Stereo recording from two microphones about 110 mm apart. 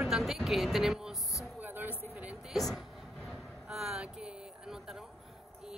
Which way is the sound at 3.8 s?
5° right (ahead or behind).